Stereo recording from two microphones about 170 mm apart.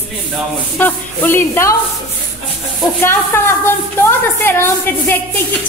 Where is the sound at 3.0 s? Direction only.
15° left (ahead or behind).